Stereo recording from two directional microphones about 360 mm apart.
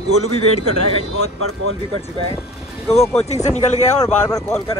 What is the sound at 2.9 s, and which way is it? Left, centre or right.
Speech, centre.